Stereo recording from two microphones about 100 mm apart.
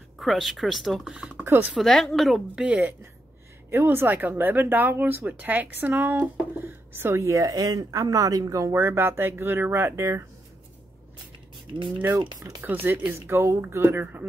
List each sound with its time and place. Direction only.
0.2 s speech: centre (ahead or behind)
1.4 s speech: 25° right (ahead or behind)
1.7 s speech: centre (ahead or behind)
2.6 s speech: 15° right (ahead or behind)
12.2 s speech: 50° right (ahead or behind)
12.6 s speech: 20° right (ahead or behind)